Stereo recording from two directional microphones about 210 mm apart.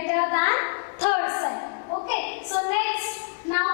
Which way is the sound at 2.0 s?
15° left (ahead or behind).